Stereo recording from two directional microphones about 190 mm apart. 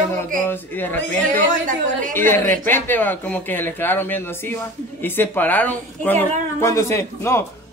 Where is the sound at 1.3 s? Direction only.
45° right (ahead or behind).